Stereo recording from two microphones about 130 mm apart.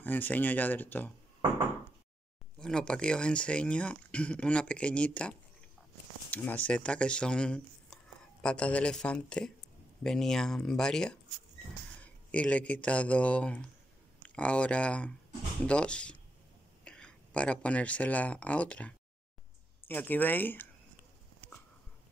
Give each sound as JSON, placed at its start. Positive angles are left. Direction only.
{"t": 0.0, "sound": "speech", "side_deg": 15}
{"t": 2.6, "sound": "speech", "side_deg": 5}
{"t": 6.3, "sound": "speech", "side_deg": 15}
{"t": 21.4, "sound": "a sound", "side_deg": -15}